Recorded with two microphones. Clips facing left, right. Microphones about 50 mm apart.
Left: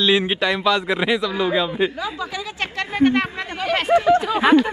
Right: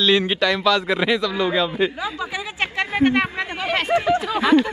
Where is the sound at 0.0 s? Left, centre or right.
Centre.